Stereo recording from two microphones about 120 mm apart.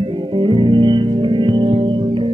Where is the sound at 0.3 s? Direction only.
40° right (ahead or behind).